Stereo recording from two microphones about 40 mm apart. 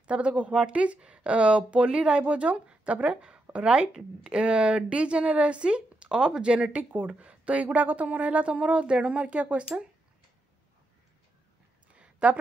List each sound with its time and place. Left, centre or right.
0.0 s speech: right
6.0 s speech: centre
6.7 s speech: right
7.1 s speech: right
11.9 s a sound: right